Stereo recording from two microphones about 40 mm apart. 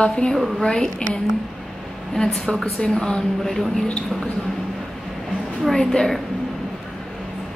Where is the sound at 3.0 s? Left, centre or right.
Centre.